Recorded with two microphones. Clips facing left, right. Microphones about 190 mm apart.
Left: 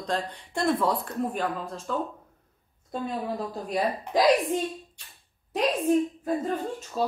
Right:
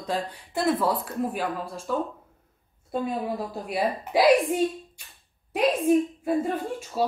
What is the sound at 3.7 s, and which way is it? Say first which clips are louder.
A woman's voice: right 1 dB; 10° right (ahead or behind).